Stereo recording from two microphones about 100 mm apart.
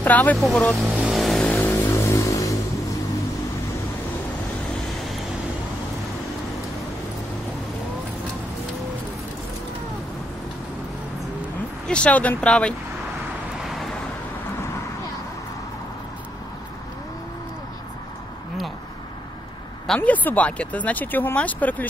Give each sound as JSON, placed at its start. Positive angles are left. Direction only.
{"t": 0.0, "sound": "speech", "side_deg": 15}
{"t": 0.8, "sound": "vehicle", "side_deg": -10}
{"t": 1.1, "sound": "vehicle", "side_deg": 0}
{"t": 1.5, "sound": "a sound", "side_deg": 15}
{"t": 1.9, "sound": "vehicle", "side_deg": 30}
{"t": 11.9, "sound": "speech", "side_deg": 10}
{"t": 20.0, "sound": "speech", "side_deg": 15}